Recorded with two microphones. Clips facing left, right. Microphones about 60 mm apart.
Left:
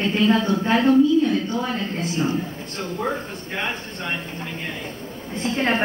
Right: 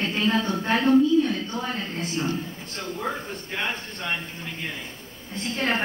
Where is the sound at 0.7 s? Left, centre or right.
Left.